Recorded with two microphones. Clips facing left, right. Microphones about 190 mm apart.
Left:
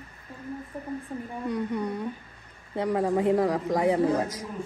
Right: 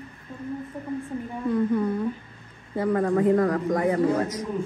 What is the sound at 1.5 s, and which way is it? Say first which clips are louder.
Speech: right 6 dB; 15° left (ahead or behind).